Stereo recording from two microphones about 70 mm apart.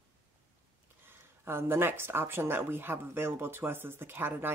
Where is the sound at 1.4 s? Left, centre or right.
Right.